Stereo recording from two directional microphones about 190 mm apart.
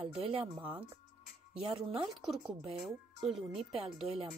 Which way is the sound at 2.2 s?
5° right (ahead or behind).